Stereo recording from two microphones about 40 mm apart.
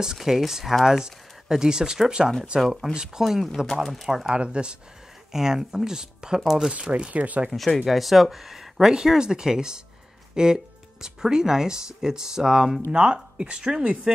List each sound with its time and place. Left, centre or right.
0.0 s speech: centre
3.3 s speech: centre
4.3 s speech: right
5.3 s speech: centre
6.7 s speech: right
7.5 s speech: centre
12.9 s speech: right